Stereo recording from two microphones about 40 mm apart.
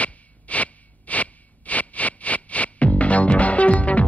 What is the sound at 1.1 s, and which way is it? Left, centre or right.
Music, left.